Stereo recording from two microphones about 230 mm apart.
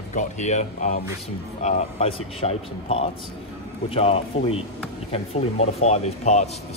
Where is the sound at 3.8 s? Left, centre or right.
Left.